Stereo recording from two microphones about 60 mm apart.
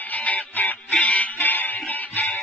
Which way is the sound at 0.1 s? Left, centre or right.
Left.